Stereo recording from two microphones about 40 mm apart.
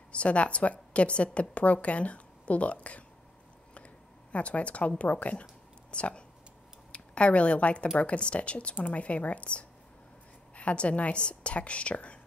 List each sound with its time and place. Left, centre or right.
0.1 s a woman's voice: left
3.7 s a sound: left
6.9 s a woman's voice: left